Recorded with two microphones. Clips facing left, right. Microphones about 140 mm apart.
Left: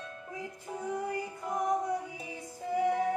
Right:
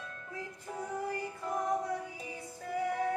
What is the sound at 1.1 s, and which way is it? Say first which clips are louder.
Music: left 1 dB; 20° left (ahead or behind).